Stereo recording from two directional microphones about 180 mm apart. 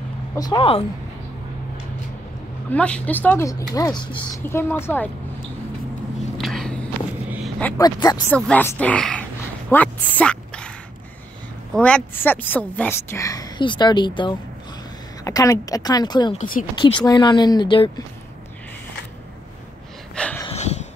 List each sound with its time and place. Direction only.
0.4 s speech: 25° left (ahead or behind)
2.7 s a woman's voice: 5° left (ahead or behind); by 4.3 s 25° left (ahead or behind)
4.5 s a woman's voice: 15° left (ahead or behind)
6.3 s walk: centre (ahead or behind)
7.2 s a sound: centre (ahead or behind)
7.7 s speech: 20° left (ahead or behind)
8.5 s a woman's voice: 10° left (ahead or behind)
9.7 s a sound: 10° left (ahead or behind)
11.7 s a woman's voice: 5° left (ahead or behind); by 16.3 s 25° left (ahead or behind)
16.3 s speech: 50° left (ahead or behind)
16.8 s speech: 25° left (ahead or behind)
20.2 s a sound: 5° left (ahead or behind)
20.4 s a sound: 40° left (ahead or behind)